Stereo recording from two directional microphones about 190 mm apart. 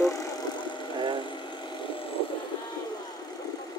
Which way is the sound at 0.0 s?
15° left (ahead or behind).